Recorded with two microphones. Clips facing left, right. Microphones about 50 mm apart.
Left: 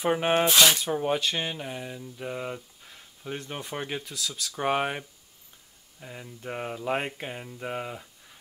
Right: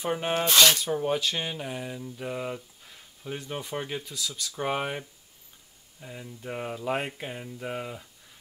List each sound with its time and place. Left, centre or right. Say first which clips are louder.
0.0 s speech: left 4 dB; left
0.5 s speech: even; centre
4.0 s speech: even; centre
4.6 s speech: left 3 dB; left
5.9 s speech: even; centre